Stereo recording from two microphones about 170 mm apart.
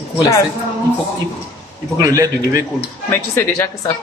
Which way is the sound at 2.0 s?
20° right (ahead or behind).